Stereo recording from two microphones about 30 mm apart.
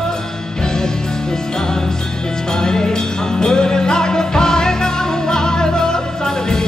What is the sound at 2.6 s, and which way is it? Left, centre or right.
Music, left.